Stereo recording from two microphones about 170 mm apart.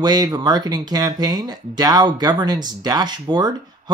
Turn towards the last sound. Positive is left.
turn(degrees=-25)  # may be behind; listen again after turning